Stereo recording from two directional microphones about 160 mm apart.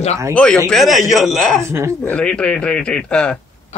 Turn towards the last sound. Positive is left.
turn(degrees=5)  # may be behind; listen again after turning